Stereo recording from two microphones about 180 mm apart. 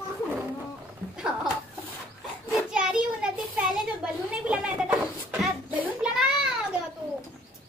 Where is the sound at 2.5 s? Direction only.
5° right (ahead or behind).